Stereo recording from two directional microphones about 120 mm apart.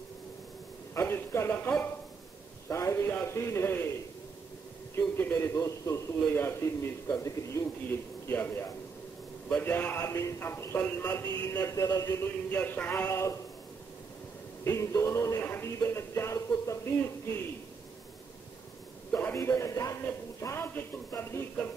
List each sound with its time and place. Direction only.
0.9 s a man's voice: 20° left (ahead or behind)
4.9 s a man's voice: 20° left (ahead or behind)
12.4 s speech: 15° left (ahead or behind)
14.6 s a man's voice: 25° left (ahead or behind)
15.8 s a sound: 20° left (ahead or behind)
19.1 s a man's voice: 20° left (ahead or behind)